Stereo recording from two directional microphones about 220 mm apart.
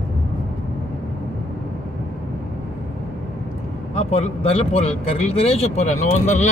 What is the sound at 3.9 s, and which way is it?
Speech, 30° left (ahead or behind).